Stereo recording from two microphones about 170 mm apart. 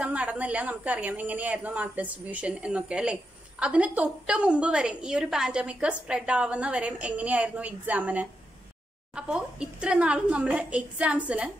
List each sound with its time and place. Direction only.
0.0 s speech: 5° right (ahead or behind)